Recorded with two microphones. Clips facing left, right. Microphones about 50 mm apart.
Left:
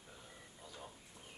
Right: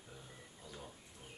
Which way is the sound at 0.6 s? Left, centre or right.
Centre.